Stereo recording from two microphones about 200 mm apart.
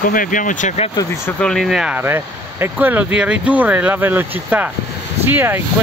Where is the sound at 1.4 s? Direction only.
Centre (ahead or behind).